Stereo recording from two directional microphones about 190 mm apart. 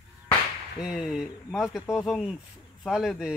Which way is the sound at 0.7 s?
Centre (ahead or behind).